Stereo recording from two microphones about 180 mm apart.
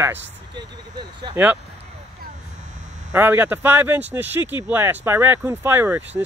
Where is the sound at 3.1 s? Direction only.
10° right (ahead or behind).